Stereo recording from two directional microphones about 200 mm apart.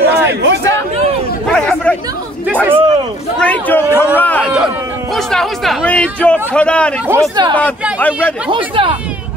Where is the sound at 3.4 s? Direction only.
10° left (ahead or behind).